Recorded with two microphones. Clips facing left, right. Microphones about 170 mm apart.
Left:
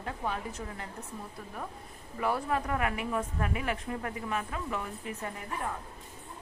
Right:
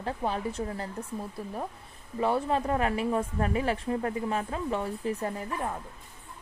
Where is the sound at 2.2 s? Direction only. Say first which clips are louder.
Right 4 dB; 25° right (ahead or behind).